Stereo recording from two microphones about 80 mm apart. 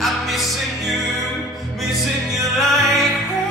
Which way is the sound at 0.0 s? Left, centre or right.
Centre.